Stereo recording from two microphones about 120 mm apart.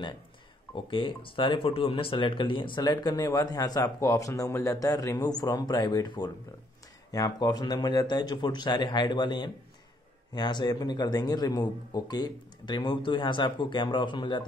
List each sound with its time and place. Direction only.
0.7 s speech: 45° left (ahead or behind)